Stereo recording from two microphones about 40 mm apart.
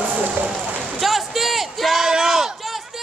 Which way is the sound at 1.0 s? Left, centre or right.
Centre.